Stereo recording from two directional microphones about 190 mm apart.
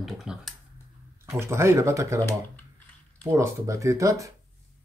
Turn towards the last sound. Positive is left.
turn(degrees=-15)  # may be behind; listen again after turning